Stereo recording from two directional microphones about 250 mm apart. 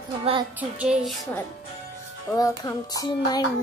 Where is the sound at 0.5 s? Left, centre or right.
Centre.